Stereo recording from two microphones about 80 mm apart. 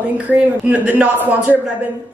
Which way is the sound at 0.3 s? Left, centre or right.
Centre.